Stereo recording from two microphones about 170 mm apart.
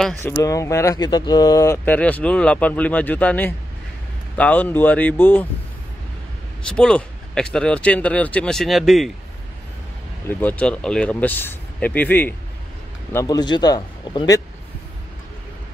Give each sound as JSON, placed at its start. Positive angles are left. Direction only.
{"t": 0.4, "sound": "speech", "side_deg": 20}
{"t": 6.7, "sound": "speech", "side_deg": 5}
{"t": 10.2, "sound": "a man's voice", "side_deg": 10}